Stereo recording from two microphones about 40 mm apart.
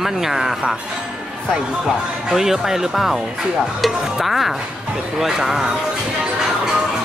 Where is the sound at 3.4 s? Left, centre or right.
Right.